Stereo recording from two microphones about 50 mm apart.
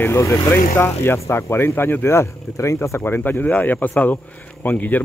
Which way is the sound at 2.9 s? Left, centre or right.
Left.